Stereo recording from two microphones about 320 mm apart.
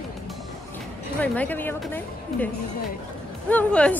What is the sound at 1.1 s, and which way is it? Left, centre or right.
A woman's voice, centre.